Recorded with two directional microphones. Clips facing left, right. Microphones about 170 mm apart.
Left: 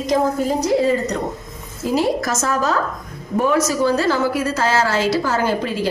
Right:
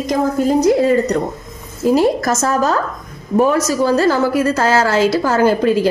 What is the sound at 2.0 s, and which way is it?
A woman's voice, 45° right (ahead or behind).